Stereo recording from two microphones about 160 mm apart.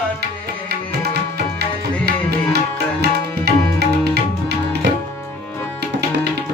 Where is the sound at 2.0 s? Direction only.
90° right.